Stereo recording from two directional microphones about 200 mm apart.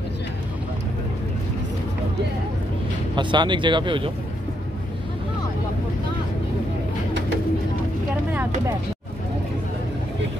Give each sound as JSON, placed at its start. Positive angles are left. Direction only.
{"t": 3.2, "sound": "speech", "side_deg": -25}